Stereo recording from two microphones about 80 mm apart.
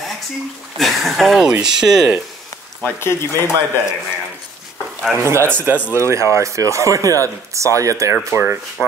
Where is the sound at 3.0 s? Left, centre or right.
Left.